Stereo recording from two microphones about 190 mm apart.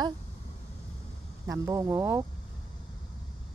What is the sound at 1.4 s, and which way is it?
Speech, 15° right (ahead or behind).